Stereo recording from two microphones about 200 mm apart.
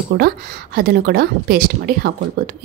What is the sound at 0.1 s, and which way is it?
A woman's voice, 50° right (ahead or behind).